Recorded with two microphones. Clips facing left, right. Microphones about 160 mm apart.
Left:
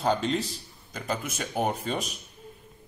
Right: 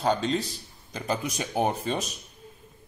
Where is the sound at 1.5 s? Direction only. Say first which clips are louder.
Right 2 dB; centre (ahead or behind).